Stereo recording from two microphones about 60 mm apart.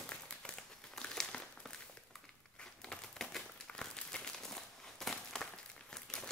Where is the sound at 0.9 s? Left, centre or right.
Centre.